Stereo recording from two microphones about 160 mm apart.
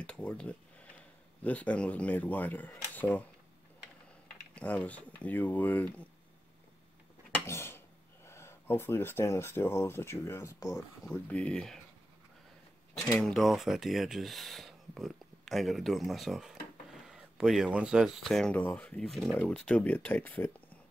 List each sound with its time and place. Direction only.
0.0 s speech: 5° left (ahead or behind)
4.6 s speech: 5° left (ahead or behind)
7.3 s a sound: 15° left (ahead or behind)
8.3 s speech: 15° left (ahead or behind)
11.1 s speech: 5° left (ahead or behind)
13.1 s speech: centre (ahead or behind)